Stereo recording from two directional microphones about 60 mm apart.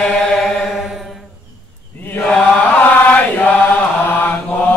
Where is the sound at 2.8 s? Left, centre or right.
Left.